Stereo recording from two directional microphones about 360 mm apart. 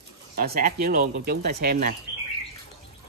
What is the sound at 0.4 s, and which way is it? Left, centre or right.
Speech, right.